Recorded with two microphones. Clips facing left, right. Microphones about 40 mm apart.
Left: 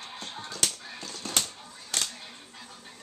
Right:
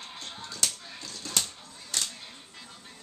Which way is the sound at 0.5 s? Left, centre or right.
Left.